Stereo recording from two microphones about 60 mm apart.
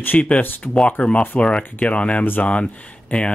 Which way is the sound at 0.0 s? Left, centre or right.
Left.